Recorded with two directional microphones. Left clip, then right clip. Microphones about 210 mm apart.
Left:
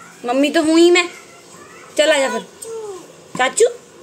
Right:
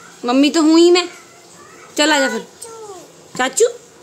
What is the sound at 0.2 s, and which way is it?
A woman's voice, 25° right (ahead or behind).